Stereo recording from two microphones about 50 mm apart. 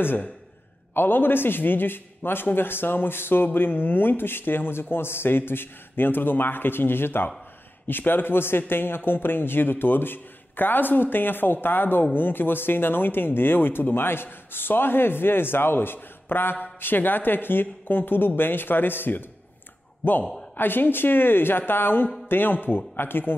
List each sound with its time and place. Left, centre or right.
0.0 s speech: left
20.5 s speech: left